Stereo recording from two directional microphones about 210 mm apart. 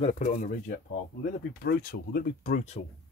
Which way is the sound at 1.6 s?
45° left (ahead or behind).